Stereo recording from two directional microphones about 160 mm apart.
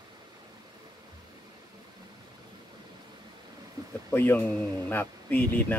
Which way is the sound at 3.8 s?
25° right (ahead or behind).